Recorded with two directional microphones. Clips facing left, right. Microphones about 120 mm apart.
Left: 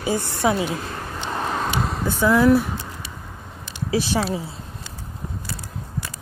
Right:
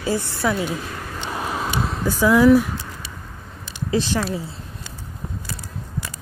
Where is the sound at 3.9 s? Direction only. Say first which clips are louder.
Even; 15° left (ahead or behind).